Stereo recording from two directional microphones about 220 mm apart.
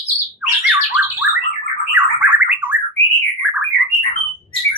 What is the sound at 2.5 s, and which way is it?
Bird, 10° right (ahead or behind).